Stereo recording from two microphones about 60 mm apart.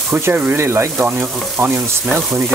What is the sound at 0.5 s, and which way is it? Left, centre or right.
Speech, right.